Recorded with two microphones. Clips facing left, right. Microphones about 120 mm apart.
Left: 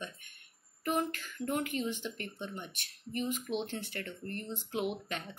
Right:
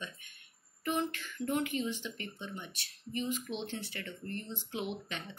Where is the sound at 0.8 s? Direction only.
45° left (ahead or behind).